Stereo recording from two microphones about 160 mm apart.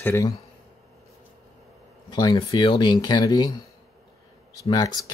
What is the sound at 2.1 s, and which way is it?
Speech, 25° left (ahead or behind).